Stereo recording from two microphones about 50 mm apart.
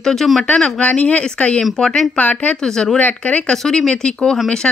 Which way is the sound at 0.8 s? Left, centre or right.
Left.